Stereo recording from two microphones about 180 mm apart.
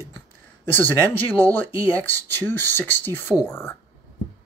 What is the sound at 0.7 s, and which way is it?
Speech, 10° left (ahead or behind).